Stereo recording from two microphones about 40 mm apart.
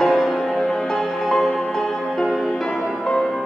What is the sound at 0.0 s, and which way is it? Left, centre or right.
Music, centre.